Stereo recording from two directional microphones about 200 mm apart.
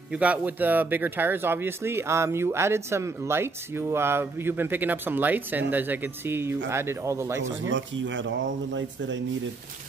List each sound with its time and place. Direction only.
0.1 s speech: 5° right (ahead or behind)
7.4 s speech: 70° right (ahead or behind)